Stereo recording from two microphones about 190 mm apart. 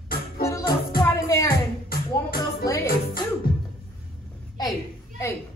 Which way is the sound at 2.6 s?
15° left (ahead or behind).